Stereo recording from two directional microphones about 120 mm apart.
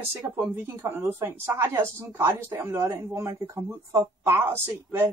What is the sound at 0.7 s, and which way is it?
A woman's voice, 20° right (ahead or behind).